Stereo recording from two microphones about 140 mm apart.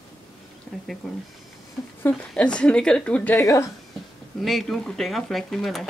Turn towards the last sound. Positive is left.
turn(degrees=0)  # may be behind; listen again after turning